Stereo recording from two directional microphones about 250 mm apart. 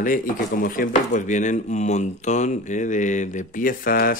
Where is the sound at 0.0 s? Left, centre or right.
Left.